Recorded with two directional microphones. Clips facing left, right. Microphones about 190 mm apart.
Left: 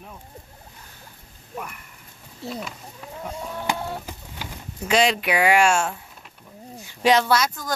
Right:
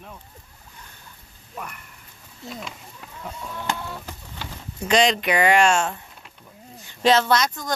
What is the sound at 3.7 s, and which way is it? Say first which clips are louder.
Printer: left 4 dB; 35° left (ahead or behind).